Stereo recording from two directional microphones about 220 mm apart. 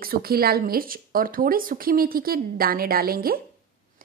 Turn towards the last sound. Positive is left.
turn(degrees=-40)  # may be behind; listen again after turning